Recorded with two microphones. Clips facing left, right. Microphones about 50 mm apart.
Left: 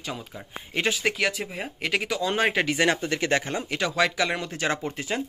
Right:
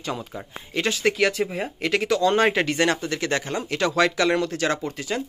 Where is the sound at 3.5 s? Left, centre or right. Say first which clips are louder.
Right 4 dB; centre.